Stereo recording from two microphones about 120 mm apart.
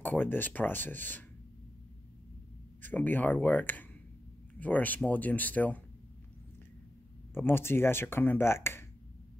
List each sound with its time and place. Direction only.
0.0 s speech: 15° left (ahead or behind)
2.8 s speech: 15° left (ahead or behind)
7.3 s speech: 20° left (ahead or behind)